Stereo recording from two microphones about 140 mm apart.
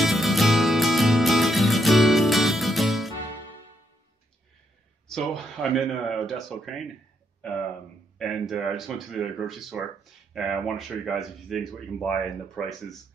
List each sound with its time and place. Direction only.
0.0 s music: centre (ahead or behind)
5.0 s speech: 5° left (ahead or behind)
8.2 s speech: centre (ahead or behind)